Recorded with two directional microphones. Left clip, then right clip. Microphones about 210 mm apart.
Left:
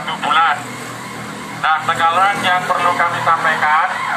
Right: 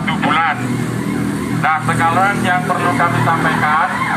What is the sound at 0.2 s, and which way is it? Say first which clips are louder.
Vehicle: left 2 dB; 45° right (ahead or behind).